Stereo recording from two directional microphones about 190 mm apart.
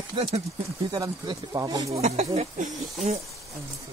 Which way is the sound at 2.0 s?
35° right (ahead or behind).